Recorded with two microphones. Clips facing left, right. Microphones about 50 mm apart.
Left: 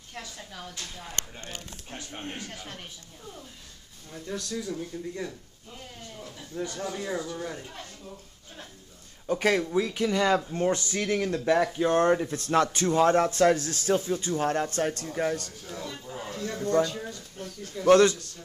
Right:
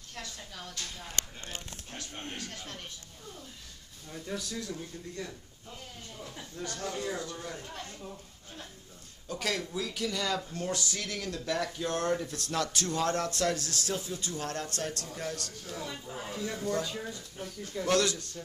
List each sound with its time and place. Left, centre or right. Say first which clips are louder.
0.1 s speech: left 3 dB; centre
4.1 s speech: left 3 dB; centre
6.5 s speech: left 4 dB; centre
9.3 s speech: left 9 dB; left
15.8 s speech: left 3 dB; centre
17.8 s speech: left 10 dB; left